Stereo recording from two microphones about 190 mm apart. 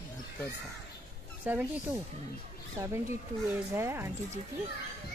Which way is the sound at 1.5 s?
10° right (ahead or behind).